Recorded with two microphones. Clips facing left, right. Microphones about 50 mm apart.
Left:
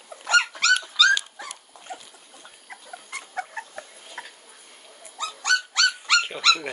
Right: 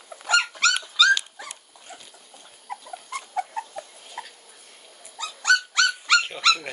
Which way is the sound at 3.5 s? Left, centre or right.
Centre.